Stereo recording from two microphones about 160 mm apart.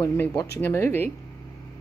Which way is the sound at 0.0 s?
15° left (ahead or behind).